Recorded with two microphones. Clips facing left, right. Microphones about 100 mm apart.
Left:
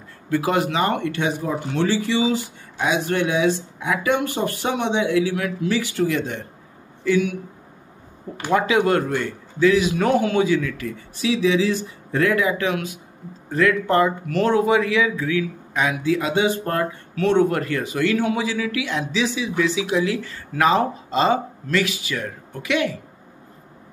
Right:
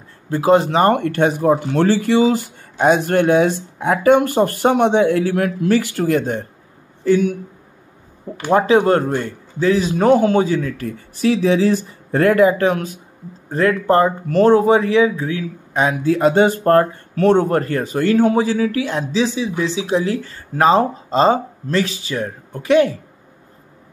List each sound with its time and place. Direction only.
0.3 s speech: 30° right (ahead or behind)
8.5 s speech: 35° right (ahead or behind)